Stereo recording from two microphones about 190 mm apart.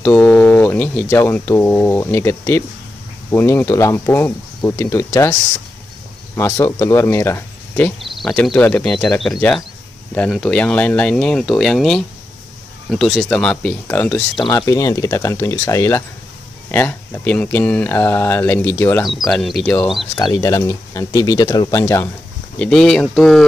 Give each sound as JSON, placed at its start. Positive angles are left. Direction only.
{"t": 0.0, "sound": "speech", "side_deg": 5}
{"t": 14.3, "sound": "speech", "side_deg": 20}
{"t": 19.0, "sound": "speech", "side_deg": 0}
{"t": 20.2, "sound": "speech", "side_deg": 20}
{"t": 22.6, "sound": "speech", "side_deg": 5}